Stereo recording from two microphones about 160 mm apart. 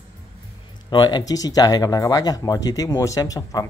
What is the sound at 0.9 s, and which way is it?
Speech, 30° left (ahead or behind).